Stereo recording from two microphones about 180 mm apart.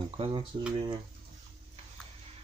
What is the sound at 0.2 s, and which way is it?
Speech, 30° right (ahead or behind).